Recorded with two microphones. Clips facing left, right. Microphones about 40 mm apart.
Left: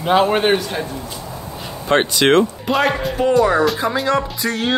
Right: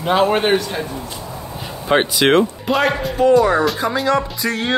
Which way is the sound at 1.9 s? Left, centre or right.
Centre.